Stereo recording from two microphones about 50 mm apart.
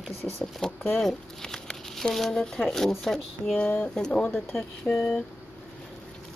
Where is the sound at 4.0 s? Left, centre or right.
Centre.